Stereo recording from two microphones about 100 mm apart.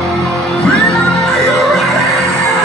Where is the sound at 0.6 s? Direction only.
5° left (ahead or behind).